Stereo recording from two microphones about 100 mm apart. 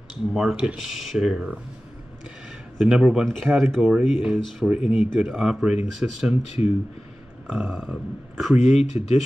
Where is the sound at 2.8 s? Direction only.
10° right (ahead or behind).